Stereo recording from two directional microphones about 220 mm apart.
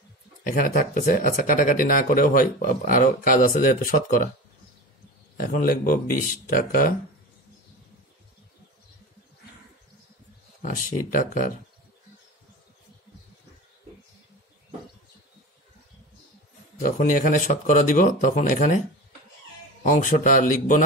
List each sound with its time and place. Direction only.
0.5 s speech: 40° left (ahead or behind)
5.4 s speech: 40° left (ahead or behind)
10.6 s speech: 35° left (ahead or behind)
16.7 s speech: 35° left (ahead or behind)
19.8 s speech: 35° left (ahead or behind)